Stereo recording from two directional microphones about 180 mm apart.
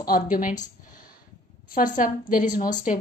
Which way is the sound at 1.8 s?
50° left (ahead or behind).